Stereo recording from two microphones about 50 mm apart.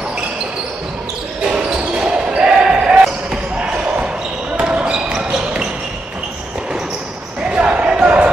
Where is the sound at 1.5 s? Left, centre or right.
Right.